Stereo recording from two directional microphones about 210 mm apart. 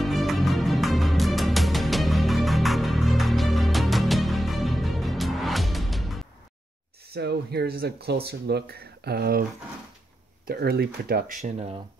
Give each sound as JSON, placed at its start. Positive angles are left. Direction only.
{"t": 0.0, "sound": "music", "side_deg": 0}
{"t": 7.2, "sound": "speech", "side_deg": -50}
{"t": 10.4, "sound": "speech", "side_deg": -45}